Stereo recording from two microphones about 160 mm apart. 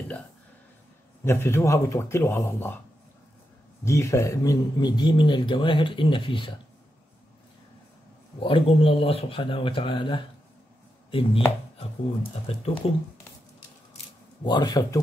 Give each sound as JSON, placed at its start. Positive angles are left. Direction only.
{"t": 1.2, "sound": "a man's voice", "side_deg": 15}
{"t": 3.8, "sound": "a man's voice", "side_deg": 15}
{"t": 8.4, "sound": "speech", "side_deg": 35}
{"t": 12.4, "sound": "speech", "side_deg": 40}
{"t": 14.4, "sound": "a man's voice", "side_deg": 25}